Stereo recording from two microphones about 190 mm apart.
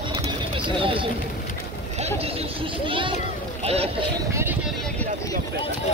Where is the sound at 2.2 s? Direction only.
30° right (ahead or behind).